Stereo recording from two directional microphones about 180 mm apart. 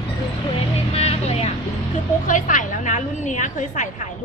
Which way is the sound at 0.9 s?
35° left (ahead or behind).